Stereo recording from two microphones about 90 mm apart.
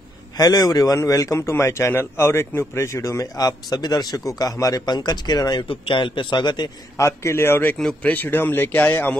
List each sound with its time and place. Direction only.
0.4 s a man's voice: 45° left (ahead or behind)
0.9 s a man's voice: 35° left (ahead or behind)
5.7 s a man's voice: 70° left (ahead or behind); by 6.7 s 55° left (ahead or behind)
7.0 s speech: 35° left (ahead or behind)
7.7 s a man's voice: 5° left (ahead or behind)
8.1 s speech: 20° left (ahead or behind)